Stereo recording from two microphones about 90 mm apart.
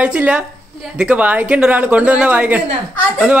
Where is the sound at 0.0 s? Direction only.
15° right (ahead or behind).